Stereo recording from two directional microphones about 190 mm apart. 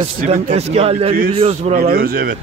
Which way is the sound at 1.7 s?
50° right (ahead or behind).